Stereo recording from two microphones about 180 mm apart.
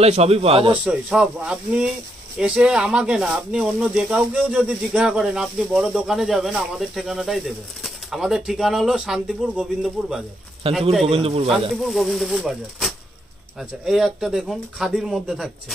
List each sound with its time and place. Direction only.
0.0 s speech: 35° right (ahead or behind)
0.8 s speech: 5° right (ahead or behind)
10.6 s speech: 30° right (ahead or behind)
11.7 s speech: centre (ahead or behind)